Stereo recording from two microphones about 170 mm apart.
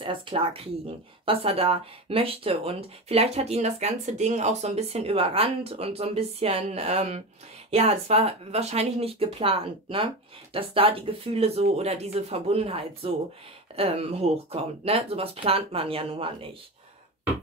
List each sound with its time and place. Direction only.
0.0 s speech: 30° right (ahead or behind)